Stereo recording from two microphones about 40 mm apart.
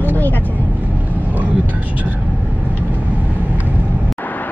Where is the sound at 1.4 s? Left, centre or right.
Right.